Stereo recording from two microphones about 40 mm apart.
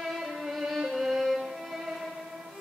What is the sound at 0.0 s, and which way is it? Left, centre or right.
Music, centre.